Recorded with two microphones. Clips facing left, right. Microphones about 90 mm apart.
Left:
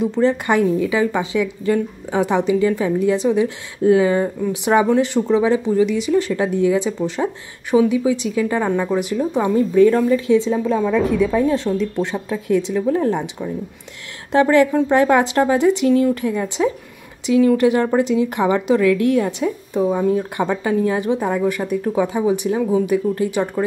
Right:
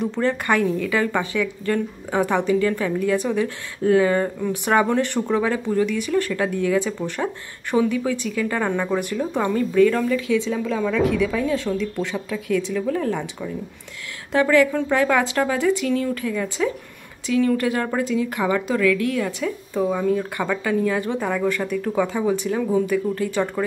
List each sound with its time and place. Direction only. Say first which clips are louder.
0.0 s a woman's voice: left 5 dB; 15° left (ahead or behind)
7.7 s a woman's voice: left 5 dB; 10° left (ahead or behind)
9.6 s a woman's voice: left 4 dB; 25° left (ahead or behind)